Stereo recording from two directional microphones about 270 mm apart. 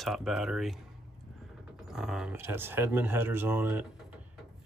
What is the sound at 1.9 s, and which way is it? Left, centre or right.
Speech, centre.